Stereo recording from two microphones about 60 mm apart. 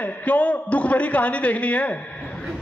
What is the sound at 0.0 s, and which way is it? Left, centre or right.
A man's voice, left.